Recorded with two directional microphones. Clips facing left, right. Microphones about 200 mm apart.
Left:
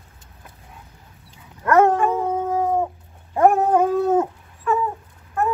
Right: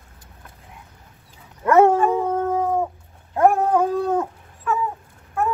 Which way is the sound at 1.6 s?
10° right (ahead or behind).